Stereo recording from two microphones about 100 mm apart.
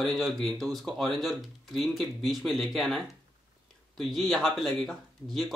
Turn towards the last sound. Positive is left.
turn(degrees=0)  # may be behind; listen again after turning